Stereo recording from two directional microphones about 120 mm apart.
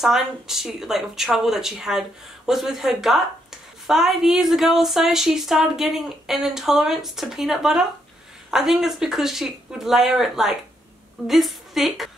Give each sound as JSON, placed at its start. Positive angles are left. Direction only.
{"t": 0.0, "sound": "a woman's voice", "side_deg": -5}